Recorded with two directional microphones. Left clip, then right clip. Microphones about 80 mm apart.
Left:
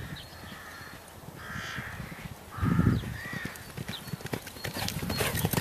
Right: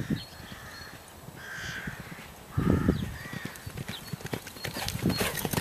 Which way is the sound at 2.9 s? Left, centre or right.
Right.